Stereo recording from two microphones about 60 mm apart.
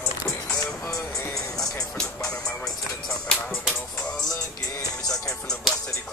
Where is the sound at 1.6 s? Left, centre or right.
Centre.